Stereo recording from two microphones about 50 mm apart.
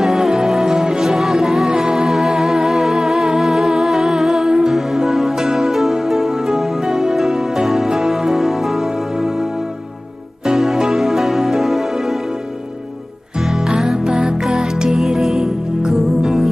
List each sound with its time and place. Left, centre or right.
0.0 s music: centre
13.4 s music: centre